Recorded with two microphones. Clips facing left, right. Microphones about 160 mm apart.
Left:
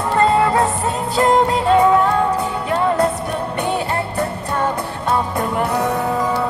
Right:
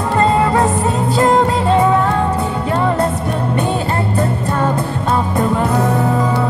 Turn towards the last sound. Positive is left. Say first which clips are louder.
# right 4 dB
turn(degrees=-25)  # may be behind; listen again after turning